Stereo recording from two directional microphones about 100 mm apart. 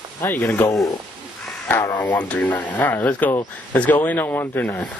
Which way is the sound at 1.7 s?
25° left (ahead or behind).